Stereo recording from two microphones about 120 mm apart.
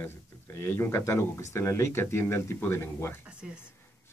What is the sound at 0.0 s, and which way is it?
Speech, 20° left (ahead or behind).